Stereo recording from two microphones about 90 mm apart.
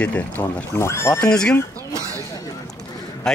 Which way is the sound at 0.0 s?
15° left (ahead or behind).